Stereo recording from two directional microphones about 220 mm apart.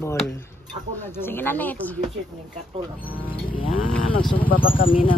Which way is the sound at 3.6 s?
65° left (ahead or behind).